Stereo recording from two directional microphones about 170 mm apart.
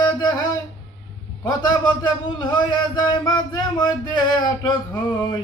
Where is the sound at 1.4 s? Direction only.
25° left (ahead or behind).